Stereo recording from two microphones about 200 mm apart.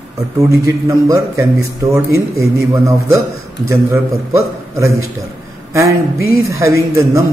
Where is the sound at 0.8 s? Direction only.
15° right (ahead or behind).